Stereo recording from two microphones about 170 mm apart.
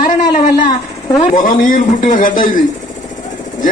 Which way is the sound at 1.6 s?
50° left (ahead or behind).